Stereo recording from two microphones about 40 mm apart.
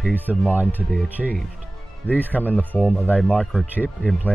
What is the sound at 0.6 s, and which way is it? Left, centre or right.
Speech, right.